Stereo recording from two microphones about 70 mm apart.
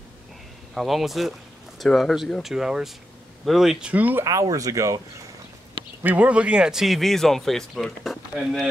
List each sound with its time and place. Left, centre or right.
0.7 s speech: centre
2.4 s speech: centre
3.8 s speech: right
4.2 s speech: right
6.0 s speech: centre